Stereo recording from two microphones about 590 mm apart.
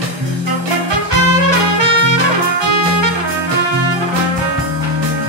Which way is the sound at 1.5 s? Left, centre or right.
Right.